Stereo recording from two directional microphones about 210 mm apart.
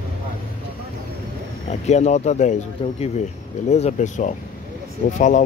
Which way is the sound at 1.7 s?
35° left (ahead or behind).